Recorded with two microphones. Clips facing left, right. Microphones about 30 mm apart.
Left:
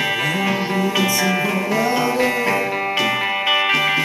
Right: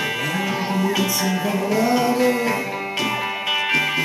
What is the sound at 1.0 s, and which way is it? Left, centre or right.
Music, centre.